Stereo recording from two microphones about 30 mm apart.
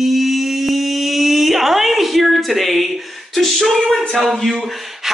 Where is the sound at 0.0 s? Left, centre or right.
Centre.